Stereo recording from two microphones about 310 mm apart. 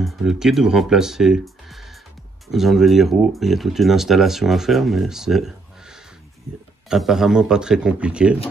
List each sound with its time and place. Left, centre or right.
0.0 s speech: centre